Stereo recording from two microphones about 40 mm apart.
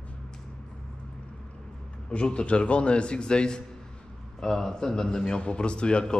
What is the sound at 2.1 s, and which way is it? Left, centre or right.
A man's voice, left.